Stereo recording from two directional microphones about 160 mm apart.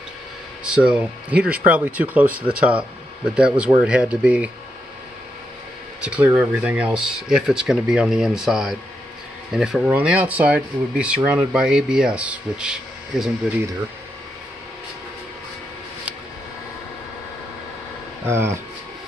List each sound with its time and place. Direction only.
0.7 s speech: 5° right (ahead or behind)
6.0 s speech: 10° right (ahead or behind)
18.3 s speech: 15° right (ahead or behind)